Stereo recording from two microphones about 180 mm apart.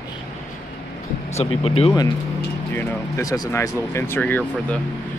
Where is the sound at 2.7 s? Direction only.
20° left (ahead or behind).